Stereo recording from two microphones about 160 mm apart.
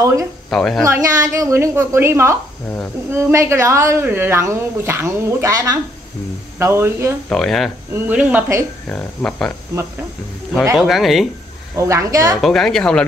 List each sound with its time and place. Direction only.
0.0 s a woman's voice: 20° right (ahead or behind)
0.5 s speech: 5° left (ahead or behind)
0.8 s speech: 20° right (ahead or behind)
7.2 s speech: centre (ahead or behind)
7.9 s speech: 10° right (ahead or behind)
8.8 s speech: 10° left (ahead or behind)
10.8 s speech: centre (ahead or behind)
11.7 s a woman's voice: 20° right (ahead or behind)
12.4 s speech: centre (ahead or behind)